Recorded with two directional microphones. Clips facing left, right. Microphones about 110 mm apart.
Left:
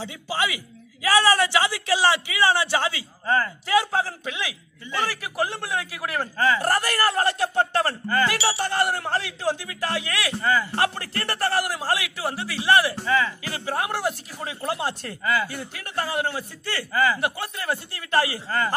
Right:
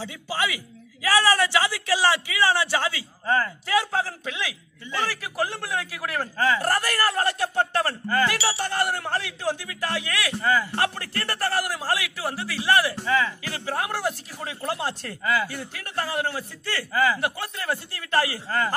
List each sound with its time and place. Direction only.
0.0 s speech: 20° left (ahead or behind)
3.3 s speech: centre (ahead or behind)
3.6 s a man's voice: 20° left (ahead or behind)
6.3 s speech: 5° right (ahead or behind)
6.6 s a man's voice: 20° left (ahead or behind)
10.4 s a man's voice: 10° right (ahead or behind)
10.8 s a sound: 30° left (ahead or behind)
13.0 s a sound: 5° right (ahead or behind)
13.4 s a sound: 20° left (ahead or behind)
15.4 s a man's voice: 20° left (ahead or behind)
16.9 s a man's voice: 5° right (ahead or behind)
17.2 s a man's voice: 15° left (ahead or behind)